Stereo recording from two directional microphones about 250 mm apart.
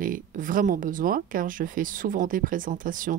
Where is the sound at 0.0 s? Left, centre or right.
Right.